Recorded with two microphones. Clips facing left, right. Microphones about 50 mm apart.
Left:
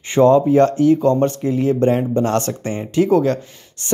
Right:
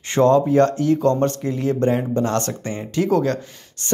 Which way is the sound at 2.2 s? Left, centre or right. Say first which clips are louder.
Left 3 dB; left.